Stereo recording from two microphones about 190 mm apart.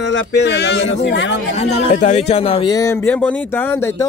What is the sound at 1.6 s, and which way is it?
Speech, 35° left (ahead or behind).